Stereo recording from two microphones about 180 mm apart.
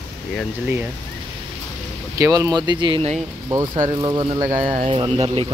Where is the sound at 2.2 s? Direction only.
20° right (ahead or behind).